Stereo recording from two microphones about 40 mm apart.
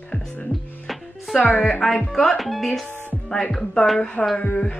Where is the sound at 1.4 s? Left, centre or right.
Left.